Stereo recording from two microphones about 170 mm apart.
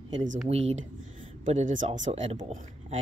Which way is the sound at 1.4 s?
45° right (ahead or behind).